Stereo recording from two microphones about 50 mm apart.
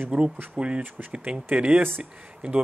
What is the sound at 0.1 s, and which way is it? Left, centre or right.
Speech, right.